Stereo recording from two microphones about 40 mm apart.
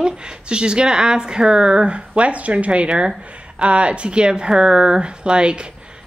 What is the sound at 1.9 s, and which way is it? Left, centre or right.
Speech, right.